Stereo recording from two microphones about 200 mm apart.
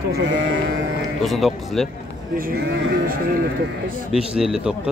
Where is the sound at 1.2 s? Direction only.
Centre (ahead or behind).